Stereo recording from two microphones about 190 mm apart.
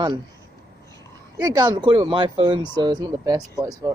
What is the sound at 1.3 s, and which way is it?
Speech, 20° right (ahead or behind).